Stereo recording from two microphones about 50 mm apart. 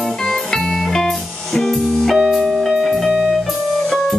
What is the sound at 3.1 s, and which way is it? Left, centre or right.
Music, centre.